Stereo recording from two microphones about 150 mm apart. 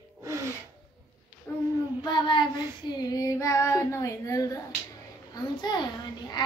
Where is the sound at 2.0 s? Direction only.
30° left (ahead or behind).